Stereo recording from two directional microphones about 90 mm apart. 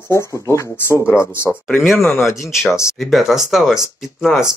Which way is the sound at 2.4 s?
5° right (ahead or behind).